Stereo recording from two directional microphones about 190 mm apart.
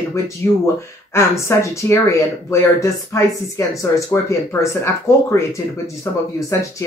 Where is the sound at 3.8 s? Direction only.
15° left (ahead or behind).